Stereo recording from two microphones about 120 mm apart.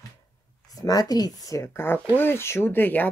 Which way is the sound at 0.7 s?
30° left (ahead or behind).